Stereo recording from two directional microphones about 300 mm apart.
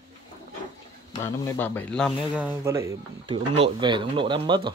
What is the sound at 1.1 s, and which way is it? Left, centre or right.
Speech, centre.